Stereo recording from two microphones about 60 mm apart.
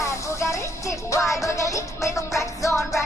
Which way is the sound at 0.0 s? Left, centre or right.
Left.